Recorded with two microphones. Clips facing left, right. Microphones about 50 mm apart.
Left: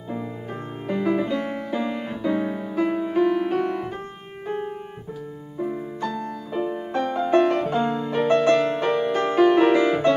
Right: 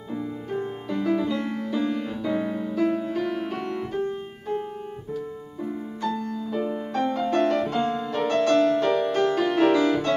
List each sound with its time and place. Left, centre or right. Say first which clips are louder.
0.1 s music: right 1 dB; left
5.6 s music: left 3 dB; centre